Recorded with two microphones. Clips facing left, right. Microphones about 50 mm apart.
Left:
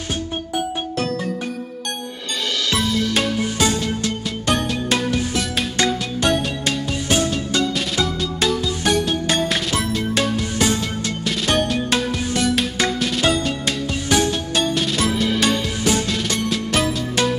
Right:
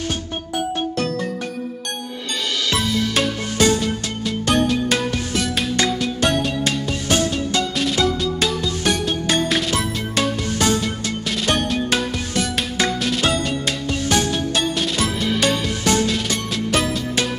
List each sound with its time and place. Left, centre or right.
0.9 s music: centre
3.2 s music: centre